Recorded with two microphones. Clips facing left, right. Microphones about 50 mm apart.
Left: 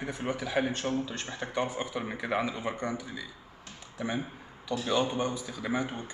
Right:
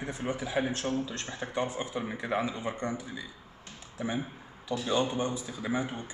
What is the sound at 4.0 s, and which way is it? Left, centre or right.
A man's voice, centre.